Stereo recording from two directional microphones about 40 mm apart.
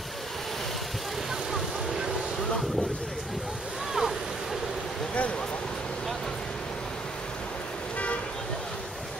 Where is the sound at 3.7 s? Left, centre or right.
Centre.